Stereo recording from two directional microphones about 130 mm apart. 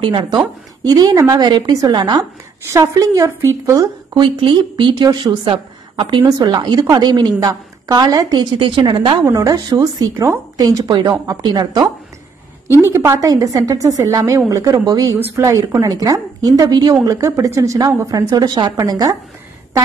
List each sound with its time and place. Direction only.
0.0 s speech: 35° right (ahead or behind)
4.1 s speech: 40° right (ahead or behind)
12.8 s speech: 20° right (ahead or behind)